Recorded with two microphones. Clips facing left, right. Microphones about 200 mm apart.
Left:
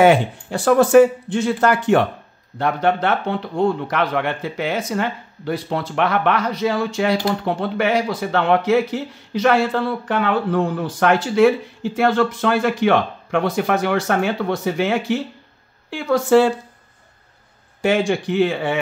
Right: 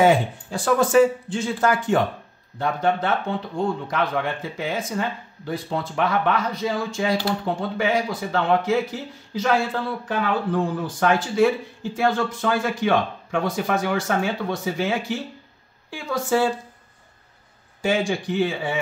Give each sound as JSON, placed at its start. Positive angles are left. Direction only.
{"t": 0.0, "sound": "speech", "side_deg": 70}
{"t": 17.8, "sound": "speech", "side_deg": 65}